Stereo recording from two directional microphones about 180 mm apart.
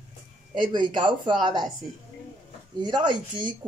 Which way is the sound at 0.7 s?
25° right (ahead or behind).